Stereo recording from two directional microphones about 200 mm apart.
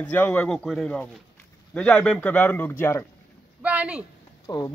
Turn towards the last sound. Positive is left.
turn(degrees=20)  # may be behind; listen again after turning